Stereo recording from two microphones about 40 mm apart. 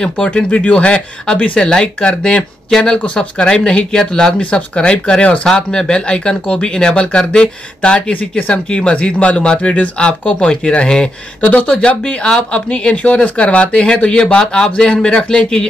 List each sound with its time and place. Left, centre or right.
0.3 s speech: left
2.0 s speech: left
3.9 s speech: centre
8.1 s speech: left
8.6 s speech: left